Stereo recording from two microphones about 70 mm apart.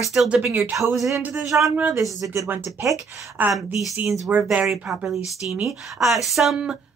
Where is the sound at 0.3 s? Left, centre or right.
Centre.